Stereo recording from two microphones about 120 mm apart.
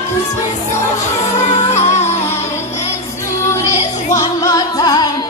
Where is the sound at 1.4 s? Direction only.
65° left (ahead or behind).